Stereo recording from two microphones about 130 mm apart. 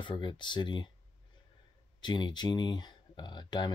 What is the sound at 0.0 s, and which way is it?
Speech, 40° left (ahead or behind).